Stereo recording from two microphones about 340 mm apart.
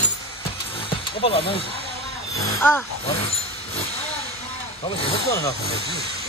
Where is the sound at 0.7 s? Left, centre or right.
Centre.